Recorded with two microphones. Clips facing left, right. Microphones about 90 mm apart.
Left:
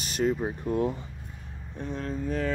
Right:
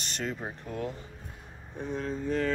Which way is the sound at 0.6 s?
25° left (ahead or behind).